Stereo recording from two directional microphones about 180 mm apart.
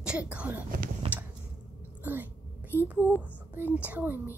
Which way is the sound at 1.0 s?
35° right (ahead or behind).